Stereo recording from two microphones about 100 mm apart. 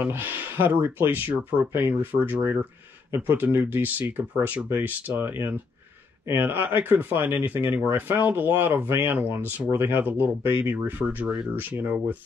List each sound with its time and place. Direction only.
0.0 s speech: 20° right (ahead or behind)